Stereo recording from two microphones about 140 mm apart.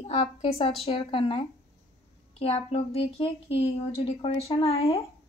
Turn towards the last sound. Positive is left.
turn(degrees=45)  # may be behind; listen again after turning